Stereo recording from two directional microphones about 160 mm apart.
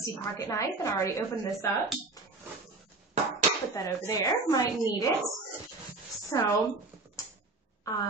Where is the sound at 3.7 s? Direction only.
20° left (ahead or behind).